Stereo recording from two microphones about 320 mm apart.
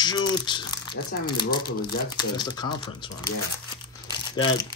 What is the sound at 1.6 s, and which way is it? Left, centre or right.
Speech, left.